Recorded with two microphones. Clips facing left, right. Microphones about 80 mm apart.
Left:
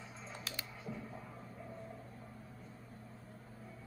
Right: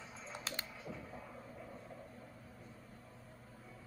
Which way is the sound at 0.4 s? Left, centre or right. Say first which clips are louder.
Right 2 dB; right.